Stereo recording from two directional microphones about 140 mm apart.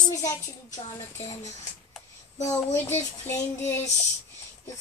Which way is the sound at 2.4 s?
20° left (ahead or behind).